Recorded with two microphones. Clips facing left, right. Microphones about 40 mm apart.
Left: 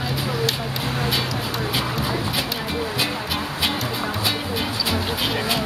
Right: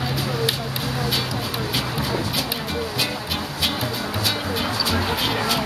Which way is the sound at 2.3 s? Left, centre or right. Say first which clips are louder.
Left 1 dB; centre.